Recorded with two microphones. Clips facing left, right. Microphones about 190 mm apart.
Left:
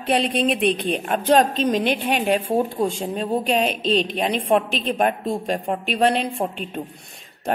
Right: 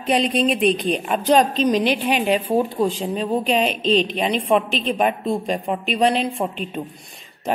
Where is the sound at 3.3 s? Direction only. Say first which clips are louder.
Right 1 dB; centre (ahead or behind).